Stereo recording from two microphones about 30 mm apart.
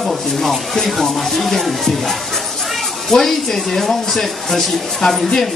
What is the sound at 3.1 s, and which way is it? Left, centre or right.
Speech, centre.